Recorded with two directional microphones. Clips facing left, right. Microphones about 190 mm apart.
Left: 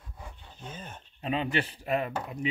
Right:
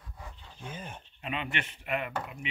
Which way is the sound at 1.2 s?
35° left (ahead or behind).